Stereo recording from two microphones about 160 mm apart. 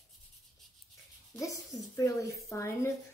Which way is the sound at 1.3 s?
20° left (ahead or behind).